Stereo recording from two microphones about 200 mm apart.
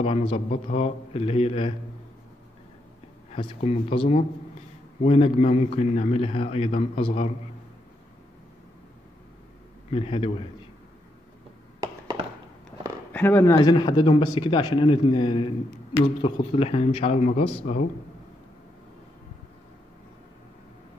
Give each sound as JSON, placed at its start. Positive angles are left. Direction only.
{"t": 0.0, "sound": "a man's voice", "side_deg": 30}
{"t": 3.3, "sound": "a man's voice", "side_deg": 30}
{"t": 9.8, "sound": "speech", "side_deg": 30}
{"t": 11.8, "sound": "a sound", "side_deg": -20}
{"t": 13.1, "sound": "a man's voice", "side_deg": 10}